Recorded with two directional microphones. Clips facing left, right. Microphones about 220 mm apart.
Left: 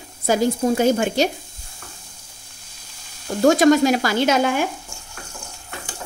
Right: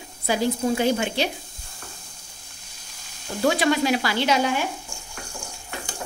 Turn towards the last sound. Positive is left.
turn(degrees=50)  # may be behind; listen again after turning